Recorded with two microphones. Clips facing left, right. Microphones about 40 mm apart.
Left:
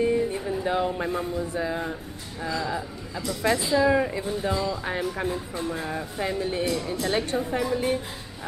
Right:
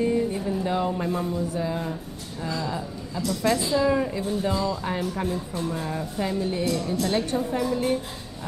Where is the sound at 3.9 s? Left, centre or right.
Centre.